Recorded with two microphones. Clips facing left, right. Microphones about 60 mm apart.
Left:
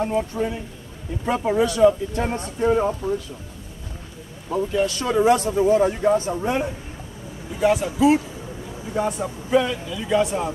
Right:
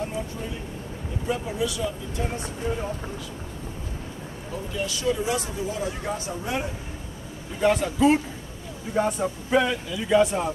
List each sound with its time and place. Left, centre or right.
0.0 s speech: left
4.7 s speech: left
6.0 s speech: left
7.6 s speech: centre